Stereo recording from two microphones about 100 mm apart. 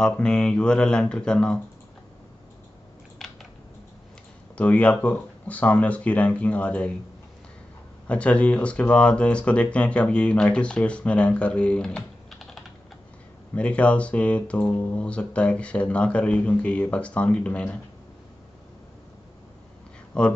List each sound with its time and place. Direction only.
0.0 s speech: 10° left (ahead or behind)
3.2 s scissors: centre (ahead or behind)
4.6 s speech: 15° left (ahead or behind)
8.1 s speech: 10° left (ahead or behind)
20.1 s speech: 10° left (ahead or behind)